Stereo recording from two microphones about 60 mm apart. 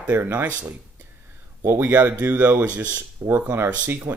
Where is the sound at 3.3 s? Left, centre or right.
Right.